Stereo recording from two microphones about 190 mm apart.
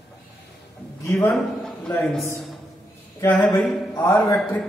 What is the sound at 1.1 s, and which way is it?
A man's voice, 5° left (ahead or behind).